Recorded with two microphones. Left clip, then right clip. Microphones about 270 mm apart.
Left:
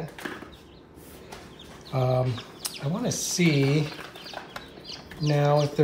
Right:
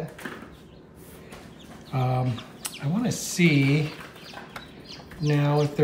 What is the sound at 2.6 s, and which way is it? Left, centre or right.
Speech, centre.